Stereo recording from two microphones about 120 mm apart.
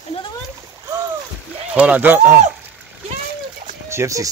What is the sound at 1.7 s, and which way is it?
Speech, 15° right (ahead or behind).